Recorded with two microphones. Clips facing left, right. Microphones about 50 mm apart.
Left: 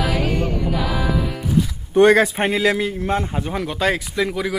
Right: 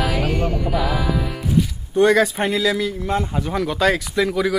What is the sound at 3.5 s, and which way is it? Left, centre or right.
Speech, centre.